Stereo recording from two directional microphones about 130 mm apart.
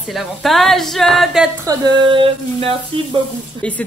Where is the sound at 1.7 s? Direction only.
35° right (ahead or behind).